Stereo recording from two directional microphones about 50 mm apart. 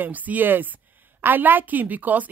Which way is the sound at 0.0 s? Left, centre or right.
Right.